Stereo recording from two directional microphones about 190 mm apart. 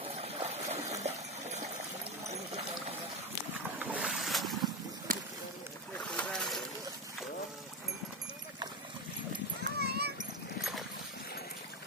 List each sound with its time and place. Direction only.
0.2 s stream: 35° right (ahead or behind)
1.0 s water: 35° right (ahead or behind)
3.8 s boat: 5° right (ahead or behind)
5.1 s a sound: 50° right (ahead or behind)
5.9 s boat: 5° left (ahead or behind)
9.8 s children playing: 60° right (ahead or behind)